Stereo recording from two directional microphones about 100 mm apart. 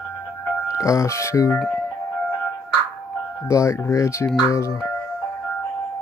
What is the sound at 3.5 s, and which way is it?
Speech, 30° left (ahead or behind).